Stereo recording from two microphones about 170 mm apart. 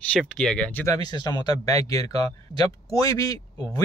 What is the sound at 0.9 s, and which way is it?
Speech, 25° left (ahead or behind).